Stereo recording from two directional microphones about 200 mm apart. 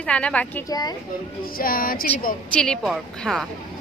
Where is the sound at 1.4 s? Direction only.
45° left (ahead or behind).